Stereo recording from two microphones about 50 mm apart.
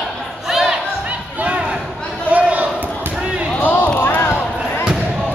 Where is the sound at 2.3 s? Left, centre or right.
Right.